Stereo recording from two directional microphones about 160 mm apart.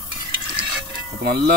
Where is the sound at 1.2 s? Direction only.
80° right.